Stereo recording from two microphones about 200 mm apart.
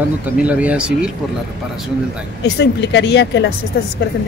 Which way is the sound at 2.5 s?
60° left (ahead or behind).